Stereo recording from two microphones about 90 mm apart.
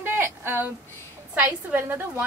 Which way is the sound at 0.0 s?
25° right (ahead or behind).